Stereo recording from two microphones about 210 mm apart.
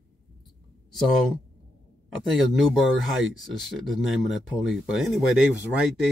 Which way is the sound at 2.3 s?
Centre (ahead or behind).